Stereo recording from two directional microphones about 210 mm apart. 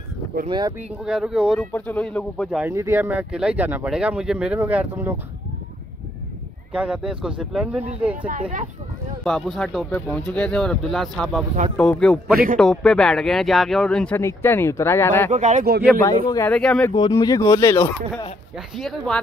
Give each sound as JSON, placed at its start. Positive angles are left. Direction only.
{"t": 0.5, "sound": "speech", "side_deg": -20}
{"t": 1.0, "sound": "speech", "side_deg": -5}
{"t": 2.6, "sound": "speech", "side_deg": -10}
{"t": 6.7, "sound": "speech", "side_deg": -5}
{"t": 8.3, "sound": "speech", "side_deg": -35}
{"t": 9.2, "sound": "speech", "side_deg": 0}
{"t": 15.3, "sound": "speech", "side_deg": -35}
{"t": 16.0, "sound": "speech", "side_deg": 15}
{"t": 16.4, "sound": "speech", "side_deg": 5}
{"t": 16.9, "sound": "speech", "side_deg": 20}
{"t": 18.8, "sound": "speech", "side_deg": 0}